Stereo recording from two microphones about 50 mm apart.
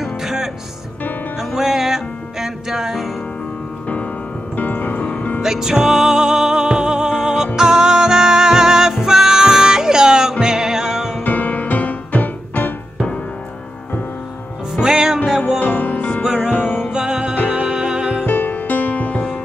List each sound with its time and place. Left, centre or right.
0.0 s music: centre
3.8 s music: left
5.4 s music: centre
11.2 s music: left
14.8 s music: centre
15.6 s music: left
16.9 s music: centre
18.2 s music: left